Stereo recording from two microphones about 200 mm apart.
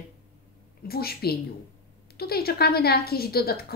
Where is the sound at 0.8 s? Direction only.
50° left (ahead or behind).